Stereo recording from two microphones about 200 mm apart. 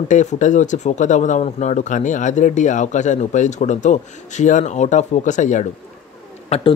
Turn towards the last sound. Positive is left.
turn(degrees=25)  # may be behind; listen again after turning